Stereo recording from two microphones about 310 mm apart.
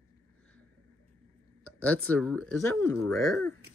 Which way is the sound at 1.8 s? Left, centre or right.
Centre.